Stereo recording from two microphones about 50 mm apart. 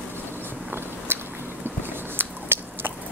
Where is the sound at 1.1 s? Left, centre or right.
Right.